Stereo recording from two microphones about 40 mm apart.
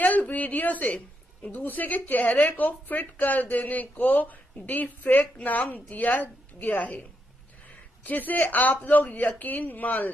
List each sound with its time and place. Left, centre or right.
0.0 s a woman's voice: left
1.5 s a woman's voice: left
8.0 s a woman's voice: left